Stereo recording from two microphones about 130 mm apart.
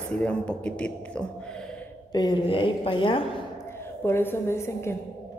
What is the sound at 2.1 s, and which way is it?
A woman's voice, 30° left (ahead or behind).